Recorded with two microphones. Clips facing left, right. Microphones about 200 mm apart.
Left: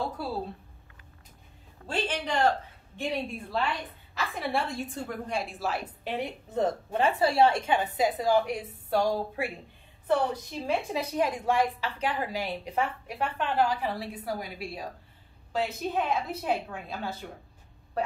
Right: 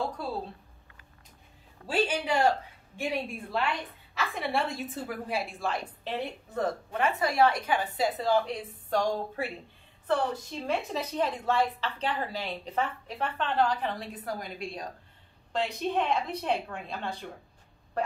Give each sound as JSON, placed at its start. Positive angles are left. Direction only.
{"t": 0.2, "sound": "a woman's voice", "side_deg": 5}
{"t": 1.9, "sound": "a man's voice", "side_deg": -10}
{"t": 4.1, "sound": "a woman's voice", "side_deg": 0}
{"t": 6.5, "sound": "a woman's voice", "side_deg": 25}